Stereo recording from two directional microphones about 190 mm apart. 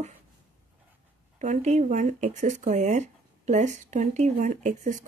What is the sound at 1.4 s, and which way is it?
A woman's voice, 35° right (ahead or behind).